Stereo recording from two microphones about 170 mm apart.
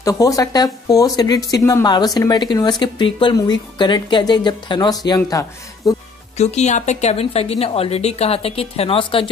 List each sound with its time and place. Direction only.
0.0 s speech: 20° left (ahead or behind)
6.3 s speech: 40° left (ahead or behind)